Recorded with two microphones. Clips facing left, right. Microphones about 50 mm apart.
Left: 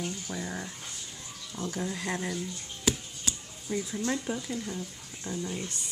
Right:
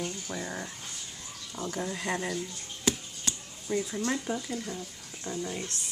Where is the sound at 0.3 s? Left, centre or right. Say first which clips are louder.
Even; centre.